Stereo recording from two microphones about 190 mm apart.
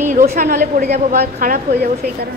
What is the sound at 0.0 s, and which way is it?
A woman's voice, 40° right (ahead or behind).